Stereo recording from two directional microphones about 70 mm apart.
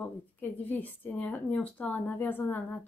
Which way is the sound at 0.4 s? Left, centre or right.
Left.